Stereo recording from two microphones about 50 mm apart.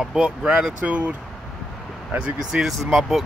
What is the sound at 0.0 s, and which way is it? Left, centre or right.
Speech, centre.